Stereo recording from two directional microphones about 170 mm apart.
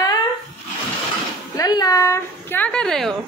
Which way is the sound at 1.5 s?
20° left (ahead or behind).